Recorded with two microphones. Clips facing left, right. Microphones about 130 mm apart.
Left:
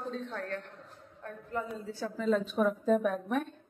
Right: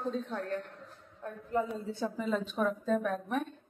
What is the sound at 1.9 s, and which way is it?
Speech, 20° right (ahead or behind).